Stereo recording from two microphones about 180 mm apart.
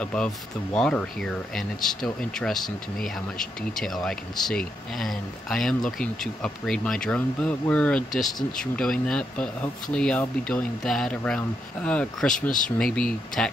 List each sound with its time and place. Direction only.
0.0 s speech: 5° left (ahead or behind)
12.4 s speech: 50° left (ahead or behind)
12.7 s speech: 5° left (ahead or behind)